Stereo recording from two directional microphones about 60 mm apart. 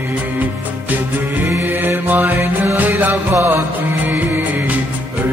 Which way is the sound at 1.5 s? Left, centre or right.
Right.